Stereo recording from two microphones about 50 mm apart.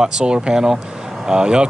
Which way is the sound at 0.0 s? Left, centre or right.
Centre.